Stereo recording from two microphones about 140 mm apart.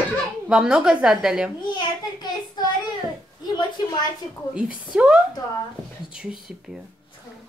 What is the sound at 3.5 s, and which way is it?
Speech, 30° left (ahead or behind).